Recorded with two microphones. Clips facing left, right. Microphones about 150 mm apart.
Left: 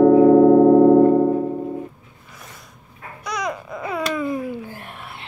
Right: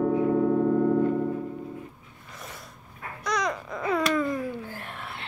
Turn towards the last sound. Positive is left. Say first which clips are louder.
# left 1 dB
turn(degrees=15)  # may be behind; listen again after turning